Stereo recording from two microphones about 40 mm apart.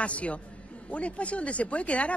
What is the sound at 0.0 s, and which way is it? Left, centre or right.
Speech, left.